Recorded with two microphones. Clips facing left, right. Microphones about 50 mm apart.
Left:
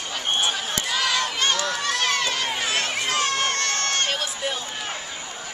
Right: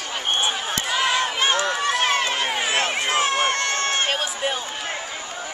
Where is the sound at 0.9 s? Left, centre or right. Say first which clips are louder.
Right 3 dB; right.